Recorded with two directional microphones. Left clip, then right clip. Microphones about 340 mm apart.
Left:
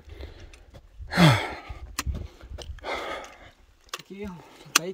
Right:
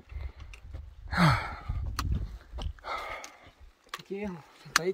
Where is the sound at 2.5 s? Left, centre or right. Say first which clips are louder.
Left 4 dB; left.